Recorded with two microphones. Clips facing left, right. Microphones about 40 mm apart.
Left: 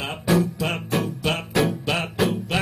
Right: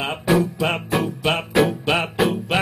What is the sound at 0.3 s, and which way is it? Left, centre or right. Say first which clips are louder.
Music: right 2 dB; centre.